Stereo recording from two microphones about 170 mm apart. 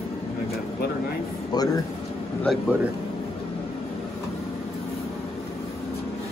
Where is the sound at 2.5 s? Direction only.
5° left (ahead or behind).